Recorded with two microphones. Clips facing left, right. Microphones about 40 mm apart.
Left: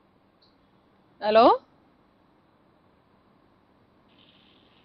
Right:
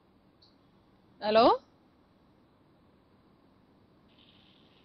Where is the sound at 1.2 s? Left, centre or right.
Centre.